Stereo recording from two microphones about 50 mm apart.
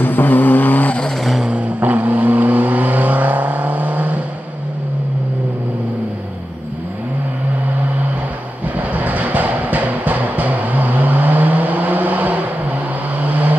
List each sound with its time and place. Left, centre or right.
0.0 s vehicle: left
1.5 s vehicle: right
8.7 s music: right
13.3 s vehicle: right